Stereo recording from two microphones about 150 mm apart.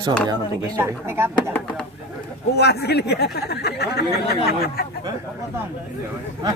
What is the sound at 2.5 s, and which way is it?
Speech, 90° left.